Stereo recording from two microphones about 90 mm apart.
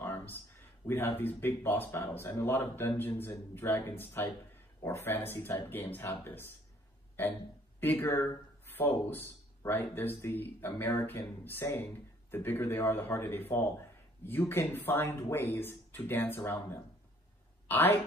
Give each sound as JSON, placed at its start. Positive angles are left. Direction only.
{"t": 0.0, "sound": "a sound", "side_deg": 25}
{"t": 0.8, "sound": "speech", "side_deg": 25}
{"t": 7.8, "sound": "speech", "side_deg": 20}
{"t": 9.7, "sound": "speech", "side_deg": 25}